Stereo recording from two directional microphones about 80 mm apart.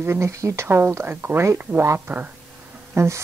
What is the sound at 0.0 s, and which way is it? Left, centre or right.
Speech, right.